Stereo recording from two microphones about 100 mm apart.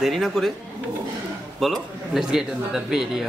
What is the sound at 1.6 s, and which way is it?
Speech, centre (ahead or behind).